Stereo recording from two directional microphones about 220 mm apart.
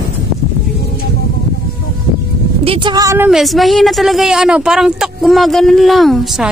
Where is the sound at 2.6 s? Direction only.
20° right (ahead or behind).